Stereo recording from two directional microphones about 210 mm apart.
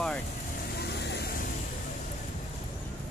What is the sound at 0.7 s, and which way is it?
Vehicle, 50° left (ahead or behind).